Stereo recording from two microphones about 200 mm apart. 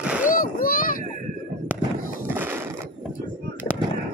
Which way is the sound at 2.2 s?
10° right (ahead or behind).